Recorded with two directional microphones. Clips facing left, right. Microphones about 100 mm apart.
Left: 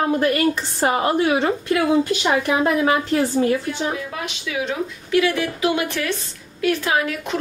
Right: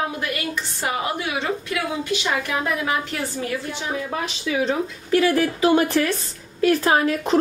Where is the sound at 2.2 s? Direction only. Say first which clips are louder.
Left 5 dB; 30° left (ahead or behind).